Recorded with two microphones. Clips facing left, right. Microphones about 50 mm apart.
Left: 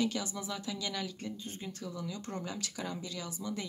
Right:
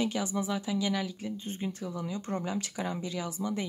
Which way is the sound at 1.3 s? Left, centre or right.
Right.